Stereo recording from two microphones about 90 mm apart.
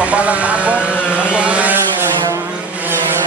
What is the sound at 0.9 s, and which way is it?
Vehicle, 20° left (ahead or behind).